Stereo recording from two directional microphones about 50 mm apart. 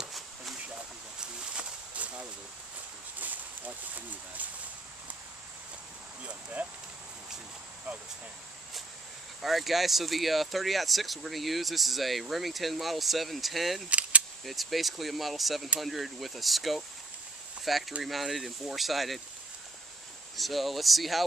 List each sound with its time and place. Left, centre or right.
1.2 s a sound: centre
2.0 s a sound: right
9.4 s speech: centre
13.8 s keys jangling: right
14.4 s speech: centre
20.3 s speech: centre